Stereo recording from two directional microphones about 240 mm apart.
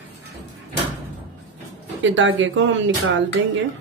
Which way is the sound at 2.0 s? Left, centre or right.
Right.